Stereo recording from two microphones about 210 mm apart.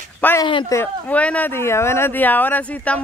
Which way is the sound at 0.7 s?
5° left (ahead or behind).